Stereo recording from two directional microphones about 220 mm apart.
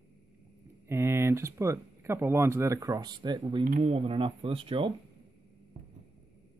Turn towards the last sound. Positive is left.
turn(degrees=-25)  # may be behind; listen again after turning